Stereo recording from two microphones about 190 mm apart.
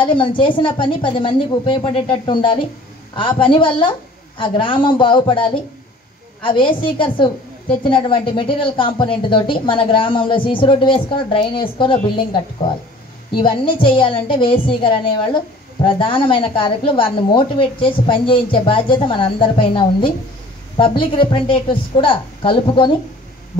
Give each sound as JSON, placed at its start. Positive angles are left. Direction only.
{"t": 0.0, "sound": "a woman's voice", "side_deg": 25}
{"t": 13.4, "sound": "a woman's voice", "side_deg": 25}